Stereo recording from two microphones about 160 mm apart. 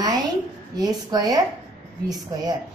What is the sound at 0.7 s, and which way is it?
A woman's voice, 25° right (ahead or behind).